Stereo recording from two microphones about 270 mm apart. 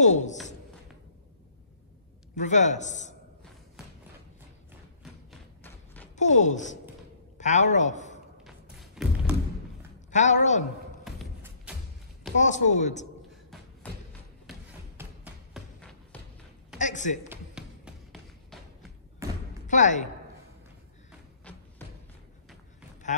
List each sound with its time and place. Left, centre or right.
0.0 s a man's voice: left
2.3 s a man's voice: left
5.0 s thump: centre
6.1 s a man's voice: left
8.7 s music: centre
10.1 s a man's voice: left
11.1 s music: centre
12.4 s a man's voice: left
14.5 s a sound: centre
16.7 s a sound: left
17.3 s tap: centre
19.7 s a man's voice: left
21.5 s music: centre
23.0 s a sound: left